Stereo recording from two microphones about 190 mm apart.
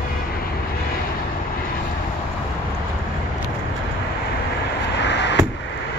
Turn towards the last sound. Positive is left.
turn(degrees=65)  # may be behind; listen again after turning